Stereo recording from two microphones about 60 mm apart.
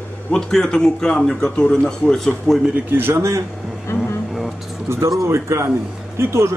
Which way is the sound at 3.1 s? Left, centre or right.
Right.